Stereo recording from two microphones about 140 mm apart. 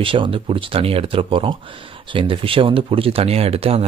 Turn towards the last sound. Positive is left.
turn(degrees=-45)  # may be behind; listen again after turning